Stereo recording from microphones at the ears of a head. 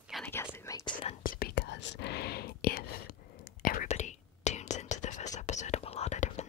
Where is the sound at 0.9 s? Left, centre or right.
Left.